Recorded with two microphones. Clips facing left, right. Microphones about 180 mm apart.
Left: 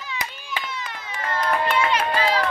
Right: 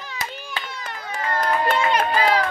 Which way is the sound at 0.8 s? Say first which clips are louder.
Right 3 dB; 45° right (ahead or behind).